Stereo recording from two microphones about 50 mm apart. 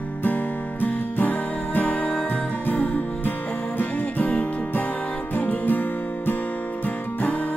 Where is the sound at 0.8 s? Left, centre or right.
Left.